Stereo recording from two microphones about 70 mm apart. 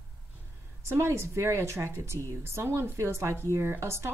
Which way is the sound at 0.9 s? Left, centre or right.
Right.